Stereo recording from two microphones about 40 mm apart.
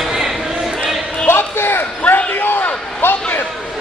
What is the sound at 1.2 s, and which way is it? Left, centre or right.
Basketball bounce, left.